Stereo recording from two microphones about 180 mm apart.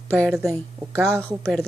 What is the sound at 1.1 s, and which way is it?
Speech, 15° right (ahead or behind).